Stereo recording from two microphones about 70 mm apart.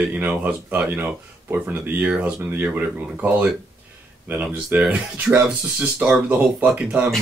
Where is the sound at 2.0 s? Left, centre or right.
Centre.